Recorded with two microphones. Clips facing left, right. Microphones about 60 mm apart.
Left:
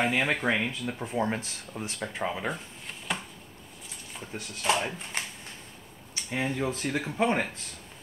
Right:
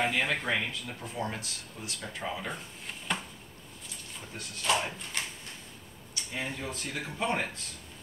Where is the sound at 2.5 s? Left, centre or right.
Centre.